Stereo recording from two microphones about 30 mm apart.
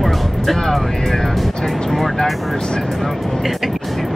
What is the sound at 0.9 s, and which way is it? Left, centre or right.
Speech, centre.